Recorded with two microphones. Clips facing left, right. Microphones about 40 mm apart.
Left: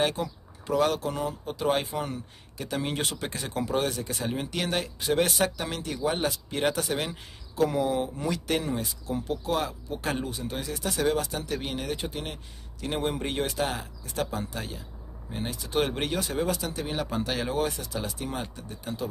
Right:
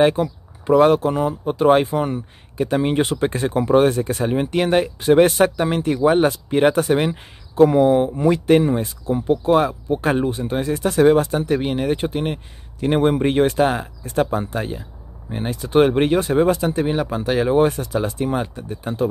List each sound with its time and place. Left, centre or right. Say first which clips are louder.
0.0 s speech: right 11 dB; right
16.9 s speech: right 9 dB; centre
18.0 s speech: right 11 dB; right